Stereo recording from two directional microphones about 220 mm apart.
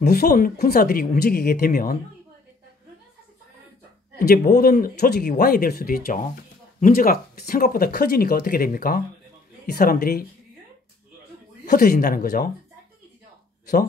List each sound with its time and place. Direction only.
0.0 s speech: 45° left (ahead or behind)
4.2 s speech: 45° left (ahead or behind)
11.6 s speech: 35° left (ahead or behind)